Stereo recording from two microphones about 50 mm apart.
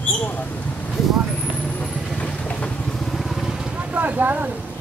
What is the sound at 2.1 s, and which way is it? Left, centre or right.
Vehicle, left.